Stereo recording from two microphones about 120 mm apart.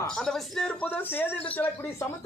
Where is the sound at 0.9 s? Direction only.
15° left (ahead or behind).